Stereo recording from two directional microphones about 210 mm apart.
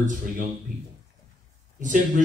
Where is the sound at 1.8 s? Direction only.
35° right (ahead or behind).